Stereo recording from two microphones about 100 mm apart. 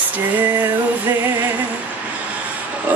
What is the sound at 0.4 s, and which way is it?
Female singing, 20° right (ahead or behind).